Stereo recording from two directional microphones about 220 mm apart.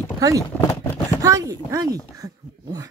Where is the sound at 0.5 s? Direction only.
5° left (ahead or behind).